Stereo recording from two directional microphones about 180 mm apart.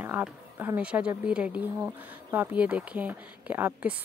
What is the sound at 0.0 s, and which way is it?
A woman's voice, 10° right (ahead or behind).